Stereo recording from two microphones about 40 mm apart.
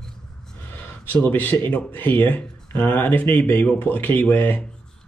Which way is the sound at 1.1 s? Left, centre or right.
Left.